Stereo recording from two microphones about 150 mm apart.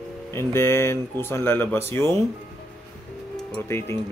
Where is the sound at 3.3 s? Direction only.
10° left (ahead or behind).